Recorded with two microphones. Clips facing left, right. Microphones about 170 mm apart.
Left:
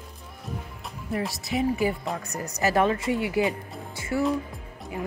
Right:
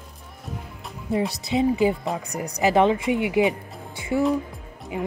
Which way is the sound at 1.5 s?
20° right (ahead or behind).